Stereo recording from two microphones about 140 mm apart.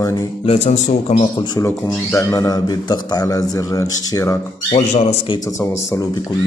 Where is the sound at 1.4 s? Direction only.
30° left (ahead or behind).